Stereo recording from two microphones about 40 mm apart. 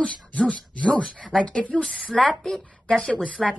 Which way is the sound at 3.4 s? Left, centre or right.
Centre.